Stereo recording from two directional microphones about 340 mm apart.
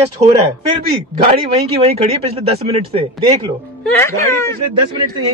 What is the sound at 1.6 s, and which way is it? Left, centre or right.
Speech, centre.